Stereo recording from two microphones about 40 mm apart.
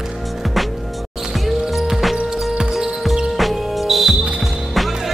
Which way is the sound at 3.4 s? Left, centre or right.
Centre.